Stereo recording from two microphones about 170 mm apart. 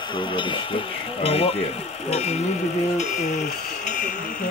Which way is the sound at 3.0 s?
45° left (ahead or behind).